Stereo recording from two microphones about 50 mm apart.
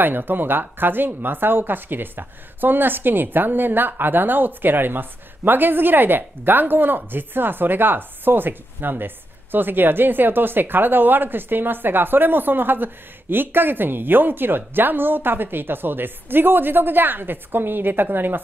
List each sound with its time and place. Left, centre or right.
0.0 s speech: right